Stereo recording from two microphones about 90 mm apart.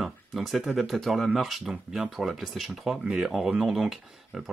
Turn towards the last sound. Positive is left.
turn(degrees=-5)  # may be behind; listen again after turning